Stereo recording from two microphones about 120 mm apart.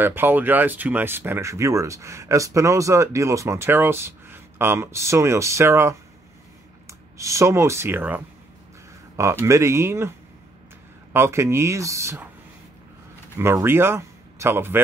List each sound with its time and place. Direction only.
0.0 s speech: 15° right (ahead or behind)
11.1 s speech: 20° right (ahead or behind)
13.4 s speech: 20° right (ahead or behind)